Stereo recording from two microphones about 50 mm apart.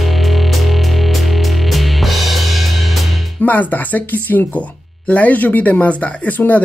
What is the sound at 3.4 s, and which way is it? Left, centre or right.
Speech, left.